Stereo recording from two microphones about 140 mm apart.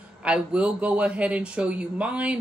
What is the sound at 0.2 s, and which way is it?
A man's voice, 10° right (ahead or behind).